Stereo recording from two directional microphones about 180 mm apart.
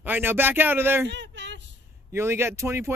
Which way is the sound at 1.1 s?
80° right.